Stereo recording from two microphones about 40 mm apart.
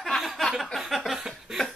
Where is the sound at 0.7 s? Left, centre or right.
Centre.